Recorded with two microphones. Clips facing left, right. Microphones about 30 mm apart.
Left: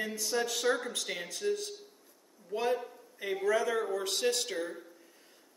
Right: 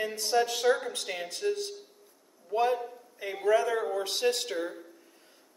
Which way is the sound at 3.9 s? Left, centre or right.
Right.